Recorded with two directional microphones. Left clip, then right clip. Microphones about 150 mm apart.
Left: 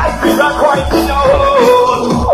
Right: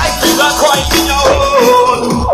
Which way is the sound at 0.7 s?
Centre (ahead or behind).